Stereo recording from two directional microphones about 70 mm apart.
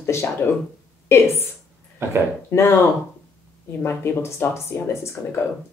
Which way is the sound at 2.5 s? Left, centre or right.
Left.